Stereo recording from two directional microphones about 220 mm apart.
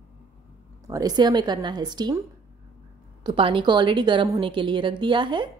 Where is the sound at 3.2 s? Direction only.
25° right (ahead or behind).